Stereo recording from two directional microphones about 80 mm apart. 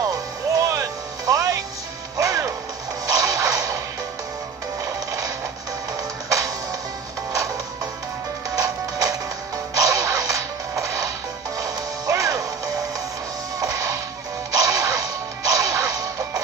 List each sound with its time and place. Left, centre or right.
0.6 s music: right
4.8 s music: right
8.5 s music: right
13.6 s music: right
14.5 s whip: right